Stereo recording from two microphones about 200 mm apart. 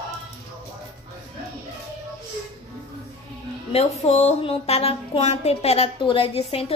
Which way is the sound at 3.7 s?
30° left (ahead or behind).